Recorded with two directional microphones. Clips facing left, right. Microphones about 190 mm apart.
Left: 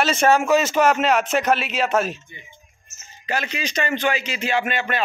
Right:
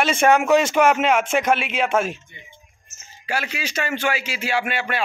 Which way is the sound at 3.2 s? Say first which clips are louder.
Left 1 dB; 10° right (ahead or behind).